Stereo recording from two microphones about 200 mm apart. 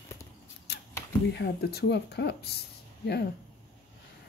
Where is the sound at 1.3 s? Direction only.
55° left (ahead or behind).